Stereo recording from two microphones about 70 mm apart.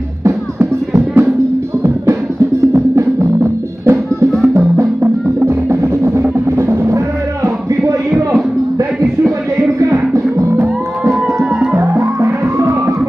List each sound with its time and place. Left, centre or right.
0.2 s music: right
2.7 s music: right
5.5 s music: right
10.1 s music: right
11.7 s music: right